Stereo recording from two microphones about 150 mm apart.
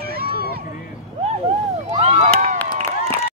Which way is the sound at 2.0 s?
50° right (ahead or behind).